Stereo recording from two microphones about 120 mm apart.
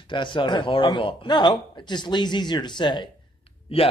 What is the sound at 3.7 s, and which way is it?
Speech, 55° left (ahead or behind).